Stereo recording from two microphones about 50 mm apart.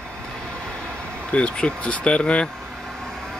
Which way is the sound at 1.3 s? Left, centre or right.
Left.